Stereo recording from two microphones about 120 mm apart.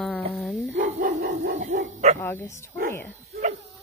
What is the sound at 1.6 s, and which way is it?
Dog, 90° right.